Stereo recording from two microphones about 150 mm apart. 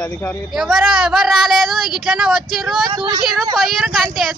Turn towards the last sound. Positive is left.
turn(degrees=0)  # may be behind; listen again after turning